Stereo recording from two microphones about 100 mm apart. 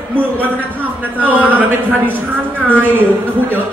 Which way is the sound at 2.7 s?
20° right (ahead or behind).